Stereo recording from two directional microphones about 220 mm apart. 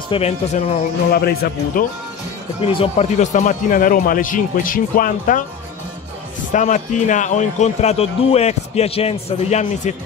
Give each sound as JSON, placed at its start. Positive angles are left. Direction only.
{"t": 0.1, "sound": "speech", "side_deg": 30}
{"t": 1.1, "sound": "a man's voice", "side_deg": 45}
{"t": 2.6, "sound": "a man's voice", "side_deg": 25}
{"t": 6.5, "sound": "a man's voice", "side_deg": 35}